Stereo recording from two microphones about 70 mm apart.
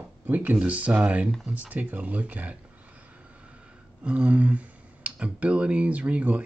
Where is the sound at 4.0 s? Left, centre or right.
Centre.